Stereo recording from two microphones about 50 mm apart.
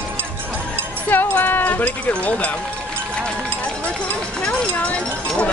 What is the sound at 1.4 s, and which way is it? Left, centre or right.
Speech, left.